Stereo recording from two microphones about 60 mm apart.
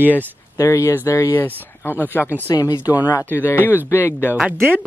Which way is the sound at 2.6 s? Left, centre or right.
Left.